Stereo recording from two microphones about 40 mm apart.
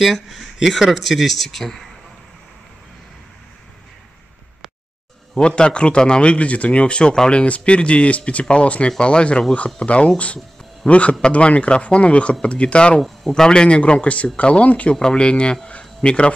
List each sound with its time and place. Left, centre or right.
0.6 s speech: centre
5.6 s speech: left
6.3 s a man's voice: left
15.0 s speech: left